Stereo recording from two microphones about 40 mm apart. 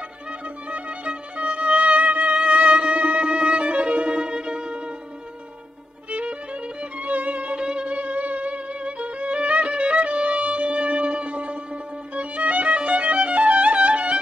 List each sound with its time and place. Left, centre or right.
0.7 s music: right
6.8 s music: right
7.5 s music: right
12.2 s violin: right